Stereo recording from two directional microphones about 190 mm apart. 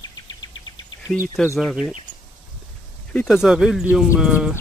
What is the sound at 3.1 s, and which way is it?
Speech, centre (ahead or behind).